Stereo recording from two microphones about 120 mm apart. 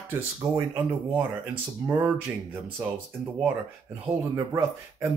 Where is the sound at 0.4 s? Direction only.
20° right (ahead or behind).